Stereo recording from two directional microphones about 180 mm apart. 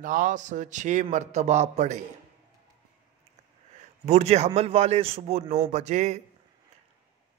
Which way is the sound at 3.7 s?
40° right (ahead or behind).